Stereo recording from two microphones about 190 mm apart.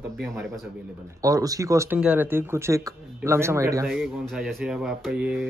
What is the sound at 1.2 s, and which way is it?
Speech, 20° right (ahead or behind).